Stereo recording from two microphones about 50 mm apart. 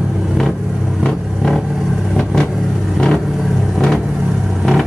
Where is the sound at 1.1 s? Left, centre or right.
Centre.